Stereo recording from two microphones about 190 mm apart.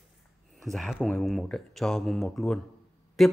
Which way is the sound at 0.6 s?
Centre (ahead or behind).